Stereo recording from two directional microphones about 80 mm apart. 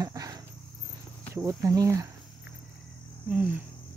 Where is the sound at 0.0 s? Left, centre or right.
Right.